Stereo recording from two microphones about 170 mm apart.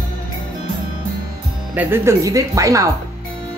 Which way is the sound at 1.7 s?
15° right (ahead or behind).